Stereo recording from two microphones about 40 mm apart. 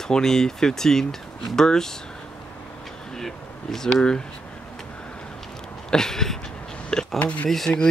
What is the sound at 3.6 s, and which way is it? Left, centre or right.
Speech, centre.